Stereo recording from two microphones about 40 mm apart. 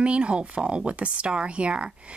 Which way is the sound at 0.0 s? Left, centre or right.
Right.